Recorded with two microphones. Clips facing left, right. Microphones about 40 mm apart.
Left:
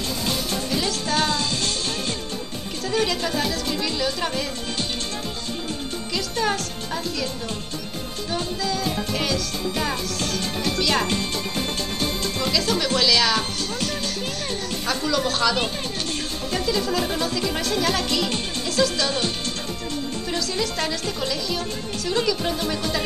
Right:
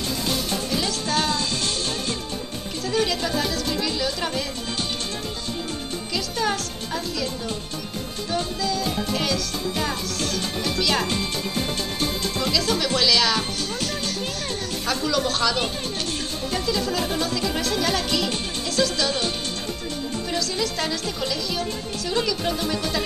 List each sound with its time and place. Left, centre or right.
0.7 s music: centre
2.9 s a woman's voice: centre
6.1 s a woman's voice: centre
8.3 s music: centre
12.4 s a woman's voice: centre
20.2 s a woman's voice: centre